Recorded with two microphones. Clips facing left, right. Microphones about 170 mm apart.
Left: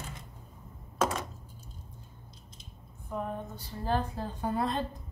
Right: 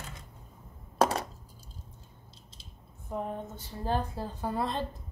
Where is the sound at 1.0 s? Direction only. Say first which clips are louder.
Right 3 dB; 35° right (ahead or behind).